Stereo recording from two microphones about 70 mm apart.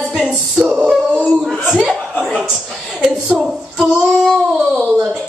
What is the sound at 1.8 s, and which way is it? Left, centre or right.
Speech, centre.